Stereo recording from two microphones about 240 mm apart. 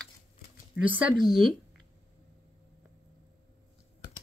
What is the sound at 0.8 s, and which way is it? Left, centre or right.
Speech, centre.